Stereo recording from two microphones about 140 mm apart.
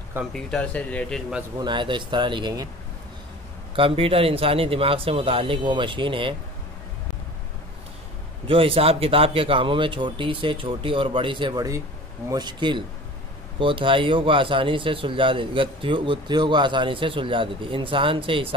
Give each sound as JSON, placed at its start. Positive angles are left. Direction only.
{"t": 0.3, "sound": "speech", "side_deg": 5}
{"t": 1.6, "sound": "speech", "side_deg": -35}
{"t": 3.7, "sound": "speech", "side_deg": -40}
{"t": 8.5, "sound": "speech", "side_deg": -40}